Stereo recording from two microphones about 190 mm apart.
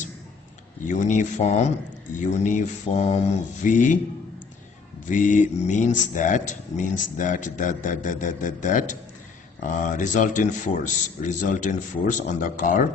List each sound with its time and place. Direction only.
0.8 s a man's voice: 40° left (ahead or behind)
5.0 s a man's voice: 40° left (ahead or behind)